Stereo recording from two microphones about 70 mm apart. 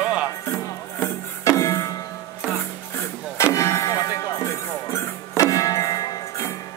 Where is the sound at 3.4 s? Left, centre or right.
Left.